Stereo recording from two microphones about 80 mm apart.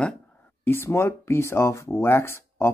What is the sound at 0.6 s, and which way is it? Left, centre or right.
Speech, left.